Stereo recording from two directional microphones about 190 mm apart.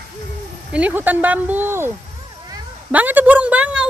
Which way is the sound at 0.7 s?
10° right (ahead or behind).